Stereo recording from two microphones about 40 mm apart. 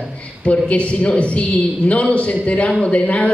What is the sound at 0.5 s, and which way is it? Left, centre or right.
Speech, left.